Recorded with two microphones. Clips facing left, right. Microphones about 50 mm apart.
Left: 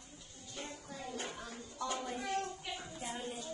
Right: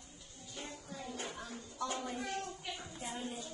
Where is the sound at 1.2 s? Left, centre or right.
Centre.